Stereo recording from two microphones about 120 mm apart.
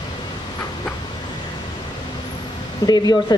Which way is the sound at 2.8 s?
35° left (ahead or behind).